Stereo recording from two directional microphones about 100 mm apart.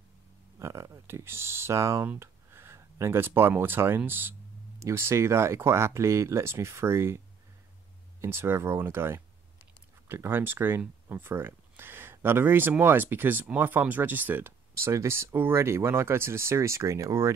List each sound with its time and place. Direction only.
0.6 s speech: 30° right (ahead or behind)
8.2 s speech: 25° right (ahead or behind)
14.7 s speech: 30° right (ahead or behind)